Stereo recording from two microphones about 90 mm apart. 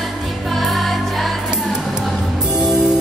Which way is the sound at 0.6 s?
Centre (ahead or behind).